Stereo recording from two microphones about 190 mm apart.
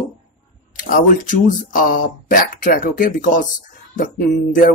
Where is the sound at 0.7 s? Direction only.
45° left (ahead or behind).